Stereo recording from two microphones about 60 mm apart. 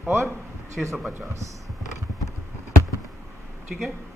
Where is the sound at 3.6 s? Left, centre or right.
Centre.